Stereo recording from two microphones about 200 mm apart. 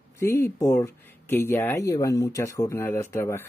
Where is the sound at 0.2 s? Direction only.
15° left (ahead or behind).